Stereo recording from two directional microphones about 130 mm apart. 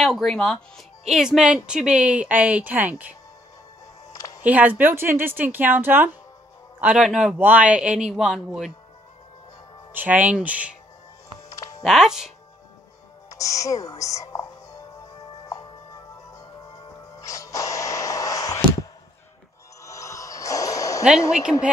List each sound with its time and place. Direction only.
0.0 s speech: centre (ahead or behind)
4.1 s music: 25° left (ahead or behind)
4.4 s speech: 10° right (ahead or behind)
9.9 s speech: 10° right (ahead or behind)
11.4 s music: 25° left (ahead or behind)
11.8 s speech: centre (ahead or behind)
13.3 s speech: 25° left (ahead or behind)
17.2 s a sound: 25° left (ahead or behind)
19.9 s music: 25° left (ahead or behind)
21.3 s speech: 5° right (ahead or behind)